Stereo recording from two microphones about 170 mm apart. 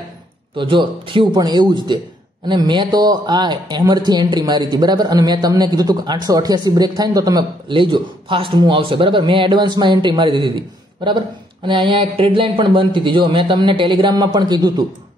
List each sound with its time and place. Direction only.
0.6 s speech: 30° right (ahead or behind)